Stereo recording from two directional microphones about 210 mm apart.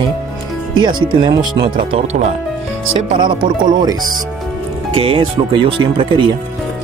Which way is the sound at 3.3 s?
20° right (ahead or behind).